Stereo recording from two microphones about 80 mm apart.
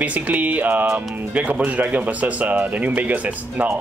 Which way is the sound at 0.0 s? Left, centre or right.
Centre.